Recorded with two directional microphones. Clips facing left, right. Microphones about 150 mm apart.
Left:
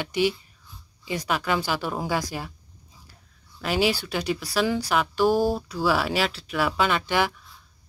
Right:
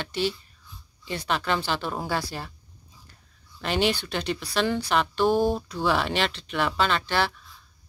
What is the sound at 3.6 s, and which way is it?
Speech, 5° left (ahead or behind).